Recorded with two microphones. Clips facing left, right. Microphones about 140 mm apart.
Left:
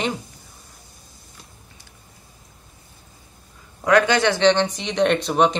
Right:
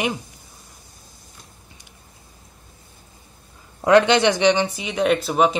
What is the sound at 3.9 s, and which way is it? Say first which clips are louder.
Speech: right 2 dB; 20° right (ahead or behind).